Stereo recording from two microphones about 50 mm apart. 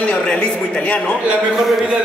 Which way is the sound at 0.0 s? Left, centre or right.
Centre.